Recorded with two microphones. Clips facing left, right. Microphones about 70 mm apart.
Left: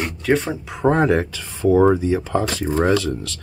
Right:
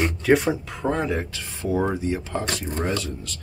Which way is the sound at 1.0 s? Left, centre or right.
Left.